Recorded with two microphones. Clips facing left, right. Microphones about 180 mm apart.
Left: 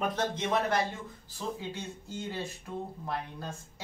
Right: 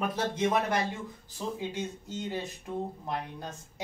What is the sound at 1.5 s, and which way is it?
A woman's voice, 15° right (ahead or behind).